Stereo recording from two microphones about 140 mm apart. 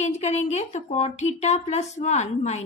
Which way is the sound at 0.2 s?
55° left (ahead or behind).